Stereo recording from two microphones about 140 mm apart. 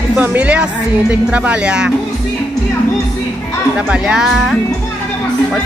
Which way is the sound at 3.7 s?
5° right (ahead or behind).